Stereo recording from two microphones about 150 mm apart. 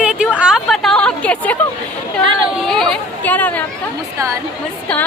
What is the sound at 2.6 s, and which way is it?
Speech, centre (ahead or behind).